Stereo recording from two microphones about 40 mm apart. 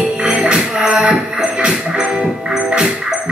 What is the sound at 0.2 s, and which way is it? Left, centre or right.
Music, right.